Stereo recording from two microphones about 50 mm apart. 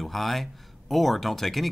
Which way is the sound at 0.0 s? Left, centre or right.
Centre.